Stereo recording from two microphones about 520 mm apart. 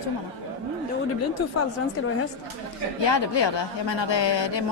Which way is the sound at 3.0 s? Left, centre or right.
Left.